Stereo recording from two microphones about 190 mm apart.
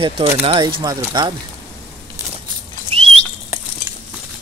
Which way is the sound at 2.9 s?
30° right (ahead or behind).